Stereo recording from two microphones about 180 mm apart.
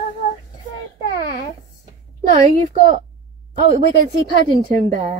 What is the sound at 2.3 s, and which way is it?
Speech, 45° right (ahead or behind).